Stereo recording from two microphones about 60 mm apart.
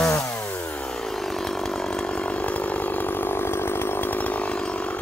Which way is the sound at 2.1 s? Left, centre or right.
Centre.